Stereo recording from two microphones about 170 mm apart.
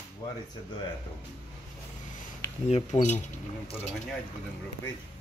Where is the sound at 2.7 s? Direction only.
45° left (ahead or behind).